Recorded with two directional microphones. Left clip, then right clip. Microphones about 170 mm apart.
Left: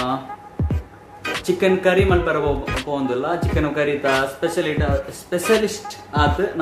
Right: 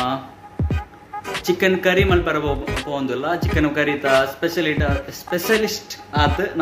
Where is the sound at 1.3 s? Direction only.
5° right (ahead or behind).